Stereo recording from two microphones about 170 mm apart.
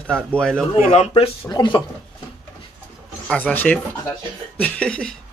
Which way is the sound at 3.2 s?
10° left (ahead or behind).